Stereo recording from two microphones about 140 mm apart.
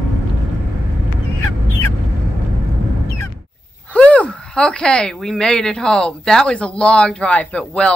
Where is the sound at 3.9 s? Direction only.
10° left (ahead or behind).